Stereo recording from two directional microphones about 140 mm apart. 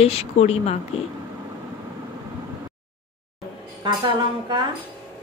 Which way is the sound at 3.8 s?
30° right (ahead or behind).